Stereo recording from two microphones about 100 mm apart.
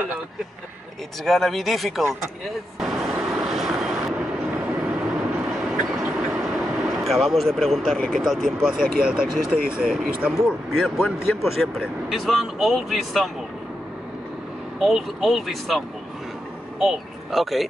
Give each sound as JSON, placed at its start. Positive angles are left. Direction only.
{"t": 1.2, "sound": "speech", "side_deg": 5}
{"t": 2.8, "sound": "vehicle", "side_deg": 0}
{"t": 5.7, "sound": "a sound", "side_deg": -5}
{"t": 8.0, "sound": "speech", "side_deg": 0}
{"t": 14.8, "sound": "speech", "side_deg": -5}
{"t": 16.8, "sound": "speech", "side_deg": -5}